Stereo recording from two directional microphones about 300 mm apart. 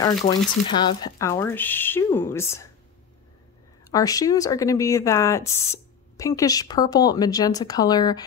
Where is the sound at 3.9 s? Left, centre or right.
Centre.